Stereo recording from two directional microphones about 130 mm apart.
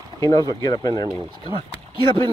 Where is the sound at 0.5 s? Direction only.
30° left (ahead or behind).